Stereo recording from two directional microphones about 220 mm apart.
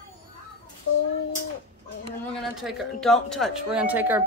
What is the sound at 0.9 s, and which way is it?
Child singing, 70° left (ahead or behind).